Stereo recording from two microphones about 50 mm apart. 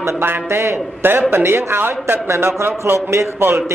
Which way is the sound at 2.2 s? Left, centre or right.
Right.